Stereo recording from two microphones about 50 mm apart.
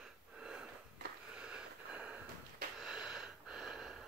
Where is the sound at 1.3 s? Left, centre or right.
Centre.